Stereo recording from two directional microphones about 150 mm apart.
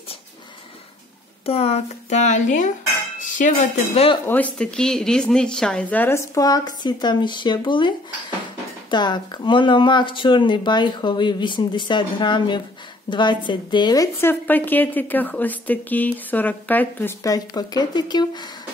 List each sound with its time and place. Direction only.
1.4 s speech: 40° left (ahead or behind)
4.3 s speech: 10° left (ahead or behind); by 7.9 s 30° left (ahead or behind)
8.9 s speech: 30° left (ahead or behind)
14.5 s speech: 10° left (ahead or behind)
17.2 s speech: 25° left (ahead or behind)